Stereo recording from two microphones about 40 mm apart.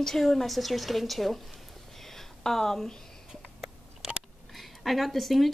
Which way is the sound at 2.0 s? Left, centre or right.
Centre.